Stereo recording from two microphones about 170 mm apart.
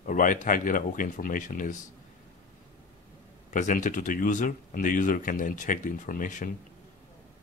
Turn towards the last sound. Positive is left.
turn(degrees=50)  # may be behind; listen again after turning